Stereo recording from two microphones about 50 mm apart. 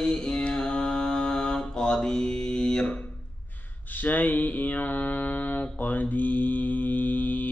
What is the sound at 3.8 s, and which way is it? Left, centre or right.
Mantra, left.